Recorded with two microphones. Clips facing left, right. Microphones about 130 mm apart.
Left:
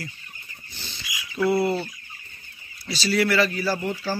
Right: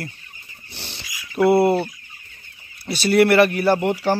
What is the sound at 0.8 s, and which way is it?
Dog, 70° right (ahead or behind).